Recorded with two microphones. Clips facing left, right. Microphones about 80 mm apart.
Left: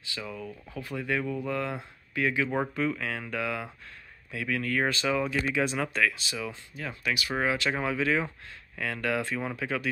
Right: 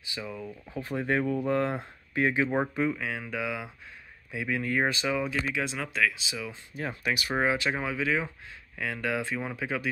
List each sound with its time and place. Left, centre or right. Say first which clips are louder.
0.0 s speech: even; centre
0.7 s speech: right 3 dB; right
2.6 s speech: right 1 dB; centre
6.8 s speech: right 1 dB; right
7.3 s speech: right 1 dB; right
7.7 s speech: left 2 dB; centre